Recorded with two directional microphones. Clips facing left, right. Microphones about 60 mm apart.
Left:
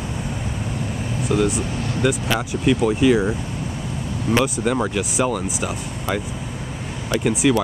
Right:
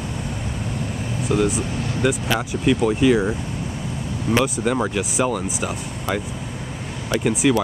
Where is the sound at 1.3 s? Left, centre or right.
Centre.